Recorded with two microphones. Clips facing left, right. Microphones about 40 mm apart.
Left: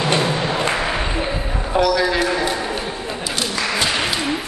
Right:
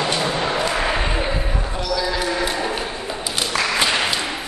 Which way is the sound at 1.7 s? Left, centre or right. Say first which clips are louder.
Left 9 dB; left.